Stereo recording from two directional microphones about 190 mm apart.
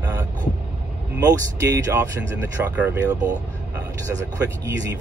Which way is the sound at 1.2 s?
20° right (ahead or behind).